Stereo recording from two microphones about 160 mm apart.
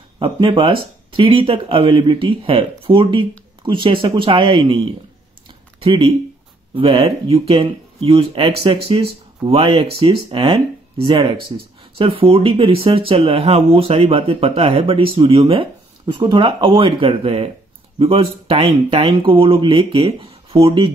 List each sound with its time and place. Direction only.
0.2 s speech: 30° right (ahead or behind)